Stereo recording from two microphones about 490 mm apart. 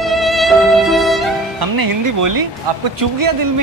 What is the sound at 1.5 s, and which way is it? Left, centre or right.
Speech, right.